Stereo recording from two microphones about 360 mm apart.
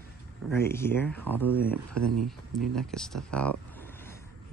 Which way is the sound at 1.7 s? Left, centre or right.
Right.